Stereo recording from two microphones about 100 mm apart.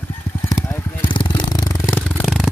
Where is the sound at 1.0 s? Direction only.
55° left (ahead or behind); by 1.9 s 35° left (ahead or behind).